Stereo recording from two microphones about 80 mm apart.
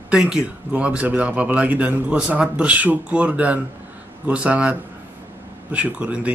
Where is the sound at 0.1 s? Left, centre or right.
Centre.